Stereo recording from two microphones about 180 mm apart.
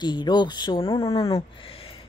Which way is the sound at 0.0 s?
25° left (ahead or behind).